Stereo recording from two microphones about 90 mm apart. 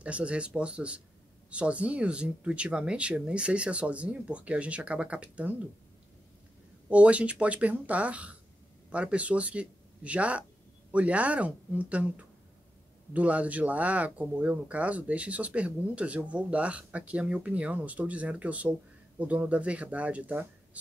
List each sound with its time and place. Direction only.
0.0 s speech: 15° right (ahead or behind)
6.9 s speech: 15° right (ahead or behind)